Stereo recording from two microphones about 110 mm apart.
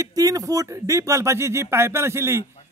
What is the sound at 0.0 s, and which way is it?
Speech, 35° right (ahead or behind).